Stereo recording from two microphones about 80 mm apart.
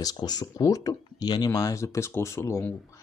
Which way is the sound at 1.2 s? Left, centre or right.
Left.